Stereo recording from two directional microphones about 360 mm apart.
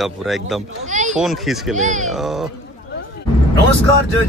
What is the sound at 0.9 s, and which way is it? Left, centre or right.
Speech, centre.